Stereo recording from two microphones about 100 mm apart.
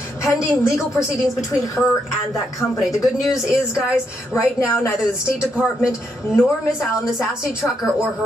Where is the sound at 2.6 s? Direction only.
Centre (ahead or behind).